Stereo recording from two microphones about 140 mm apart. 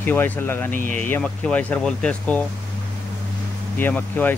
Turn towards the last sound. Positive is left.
turn(degrees=15)  # may be behind; listen again after turning